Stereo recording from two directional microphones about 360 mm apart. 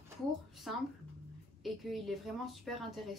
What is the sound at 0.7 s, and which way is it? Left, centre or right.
A woman's voice, centre.